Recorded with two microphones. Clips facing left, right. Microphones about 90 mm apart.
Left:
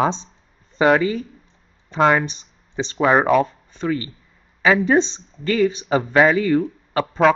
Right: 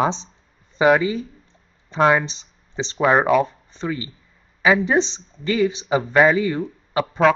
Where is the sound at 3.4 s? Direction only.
20° right (ahead or behind).